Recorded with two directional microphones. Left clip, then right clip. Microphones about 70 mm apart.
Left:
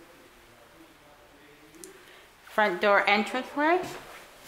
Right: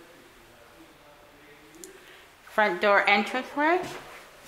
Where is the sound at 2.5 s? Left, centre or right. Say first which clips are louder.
Right 1 dB; centre.